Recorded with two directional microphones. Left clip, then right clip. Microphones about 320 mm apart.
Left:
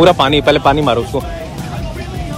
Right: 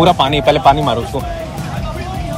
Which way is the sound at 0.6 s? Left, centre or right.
Left.